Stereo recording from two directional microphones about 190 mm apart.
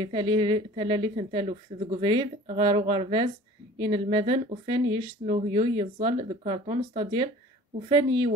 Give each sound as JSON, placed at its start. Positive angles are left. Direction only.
{"t": 0.0, "sound": "a woman's voice", "side_deg": -25}